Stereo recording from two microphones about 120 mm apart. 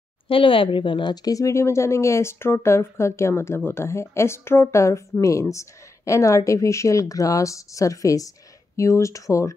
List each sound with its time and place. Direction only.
0.3 s speech: 45° left (ahead or behind); by 9.5 s 25° left (ahead or behind)